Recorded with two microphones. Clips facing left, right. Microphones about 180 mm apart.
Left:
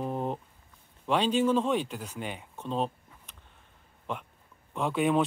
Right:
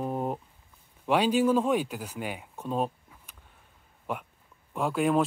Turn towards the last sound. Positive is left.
turn(degrees=0)  # may be behind; listen again after turning